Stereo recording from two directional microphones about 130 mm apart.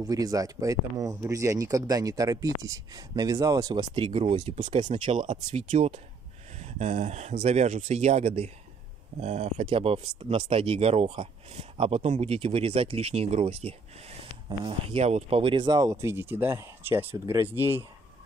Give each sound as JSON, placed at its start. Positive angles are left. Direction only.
{"t": 0.0, "sound": "speech", "side_deg": -25}
{"t": 5.6, "sound": "speech", "side_deg": -50}